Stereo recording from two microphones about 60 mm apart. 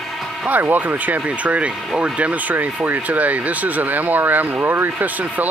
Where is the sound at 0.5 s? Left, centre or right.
Right.